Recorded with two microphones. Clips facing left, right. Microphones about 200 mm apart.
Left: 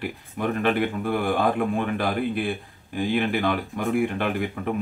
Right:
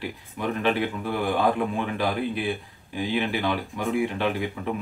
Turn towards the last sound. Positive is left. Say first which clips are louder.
# left 1 dB
turn(degrees=55)  # may be behind; listen again after turning